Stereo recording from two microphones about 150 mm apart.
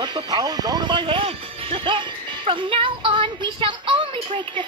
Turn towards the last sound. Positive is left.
turn(degrees=-35)  # may be behind; listen again after turning